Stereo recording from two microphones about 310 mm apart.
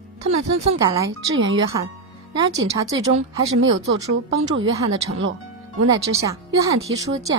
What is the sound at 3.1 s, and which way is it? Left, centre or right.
Speech, right.